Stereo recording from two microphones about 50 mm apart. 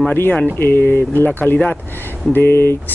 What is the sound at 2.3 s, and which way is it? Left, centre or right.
Speech, left.